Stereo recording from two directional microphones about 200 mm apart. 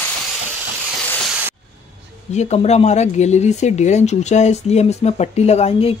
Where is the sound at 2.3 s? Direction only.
35° left (ahead or behind).